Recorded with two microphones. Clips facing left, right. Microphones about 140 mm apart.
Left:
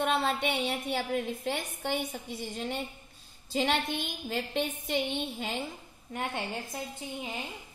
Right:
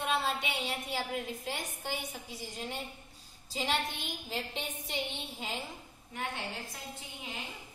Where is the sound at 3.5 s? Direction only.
60° left (ahead or behind).